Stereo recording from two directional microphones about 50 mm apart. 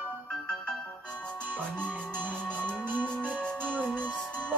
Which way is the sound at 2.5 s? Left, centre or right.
Left.